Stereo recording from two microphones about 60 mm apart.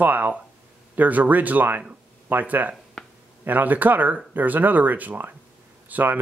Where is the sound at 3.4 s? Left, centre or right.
Right.